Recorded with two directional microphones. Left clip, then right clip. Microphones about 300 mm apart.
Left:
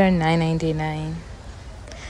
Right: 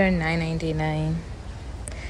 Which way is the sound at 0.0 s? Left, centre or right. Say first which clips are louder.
Left 4 dB; centre.